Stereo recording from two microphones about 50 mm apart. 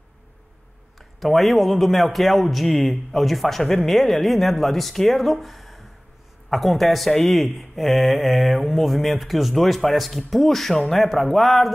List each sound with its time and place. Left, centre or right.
0.9 s a man's voice: centre